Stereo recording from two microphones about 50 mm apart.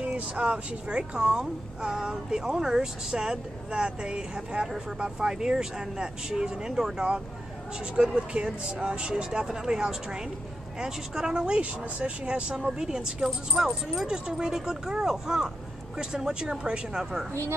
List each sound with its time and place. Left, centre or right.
0.0 s a woman's voice: right
12.5 s a woman's voice: centre
17.3 s speech: right